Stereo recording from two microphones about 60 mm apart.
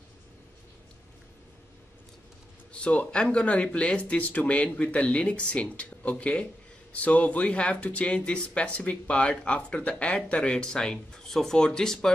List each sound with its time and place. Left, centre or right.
2.7 s speech: left